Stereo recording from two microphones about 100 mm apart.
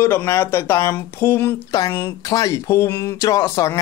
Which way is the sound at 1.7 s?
40° left (ahead or behind).